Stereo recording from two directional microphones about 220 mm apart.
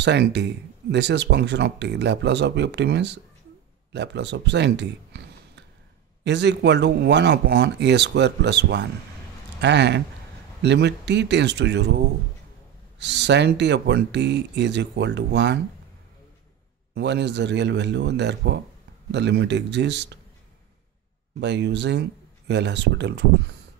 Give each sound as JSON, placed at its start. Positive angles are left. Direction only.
{"t": 0.0, "sound": "speech", "side_deg": -50}
{"t": 13.0, "sound": "speech", "side_deg": -50}
{"t": 16.9, "sound": "speech", "side_deg": -50}
{"t": 21.4, "sound": "speech", "side_deg": -50}